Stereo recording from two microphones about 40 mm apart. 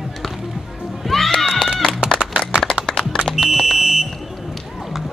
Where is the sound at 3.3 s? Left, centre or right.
Centre.